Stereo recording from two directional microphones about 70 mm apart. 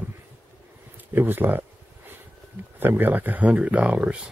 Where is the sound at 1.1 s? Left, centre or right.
Right.